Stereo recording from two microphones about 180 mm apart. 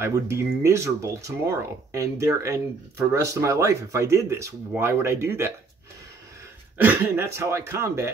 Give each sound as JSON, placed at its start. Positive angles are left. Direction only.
{"t": 0.0, "sound": "speech", "side_deg": -15}
{"t": 6.8, "sound": "speech", "side_deg": -10}